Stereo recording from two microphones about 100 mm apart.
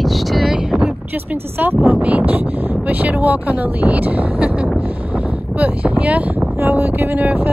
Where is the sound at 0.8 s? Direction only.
20° right (ahead or behind).